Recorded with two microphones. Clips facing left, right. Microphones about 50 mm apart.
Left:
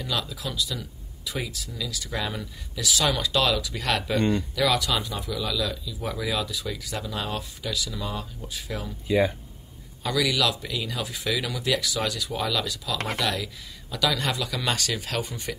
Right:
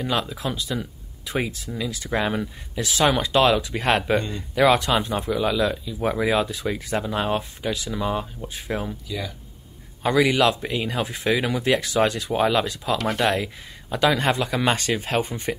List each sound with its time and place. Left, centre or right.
0.0 s speech: right
4.2 s speech: left
4.6 s speech: right
9.0 s speech: left
10.0 s speech: right